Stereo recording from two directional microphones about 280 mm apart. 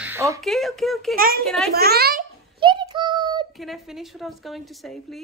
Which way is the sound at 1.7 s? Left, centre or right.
Right.